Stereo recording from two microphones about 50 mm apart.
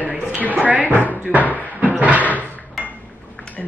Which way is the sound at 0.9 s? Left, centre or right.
Left.